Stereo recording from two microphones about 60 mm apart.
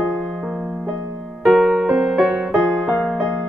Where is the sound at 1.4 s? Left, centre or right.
Centre.